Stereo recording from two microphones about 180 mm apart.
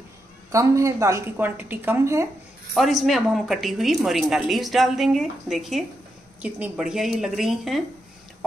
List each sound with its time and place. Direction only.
0.5 s a woman's voice: 15° right (ahead or behind)
2.7 s speech: centre (ahead or behind)